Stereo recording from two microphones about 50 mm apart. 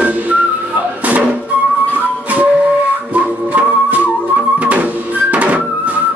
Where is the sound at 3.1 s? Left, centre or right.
Right.